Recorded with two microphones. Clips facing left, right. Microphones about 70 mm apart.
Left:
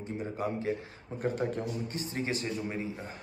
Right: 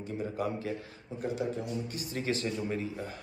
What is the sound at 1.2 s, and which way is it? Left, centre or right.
A man's voice, left.